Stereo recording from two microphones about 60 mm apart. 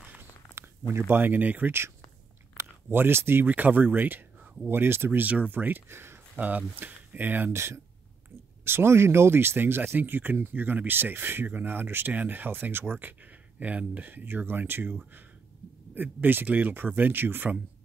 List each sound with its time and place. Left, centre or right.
0.6 s speech: right
5.2 s speech: right
6.3 s speech: right
7.5 s speech: right